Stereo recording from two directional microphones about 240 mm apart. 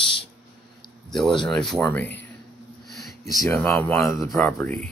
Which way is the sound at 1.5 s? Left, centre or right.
Centre.